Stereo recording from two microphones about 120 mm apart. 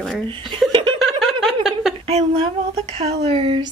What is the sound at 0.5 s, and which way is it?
Speech, 45° right (ahead or behind).